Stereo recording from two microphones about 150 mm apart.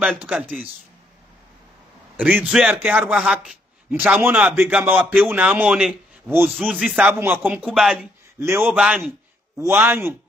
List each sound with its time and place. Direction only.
0.0 s a man's voice: 10° right (ahead or behind)
2.2 s speech: 5° right (ahead or behind)
8.4 s a man's voice: 15° right (ahead or behind)